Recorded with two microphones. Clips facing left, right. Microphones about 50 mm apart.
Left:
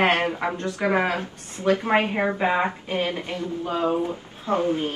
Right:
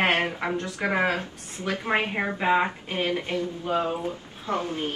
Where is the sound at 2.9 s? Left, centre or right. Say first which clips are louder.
Left 1 dB; left.